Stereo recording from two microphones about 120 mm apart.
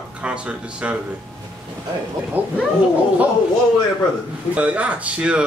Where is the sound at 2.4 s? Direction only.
15° right (ahead or behind).